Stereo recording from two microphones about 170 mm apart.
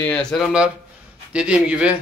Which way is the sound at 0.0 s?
5° left (ahead or behind).